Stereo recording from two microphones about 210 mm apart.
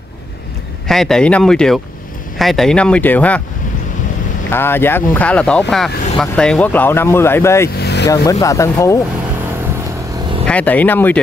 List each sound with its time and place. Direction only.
0.8 s speech: centre (ahead or behind)
4.5 s speech: 10° left (ahead or behind)
7.8 s vehicle: 55° left (ahead or behind)
8.1 s speech: 15° left (ahead or behind)
10.4 s speech: 5° left (ahead or behind)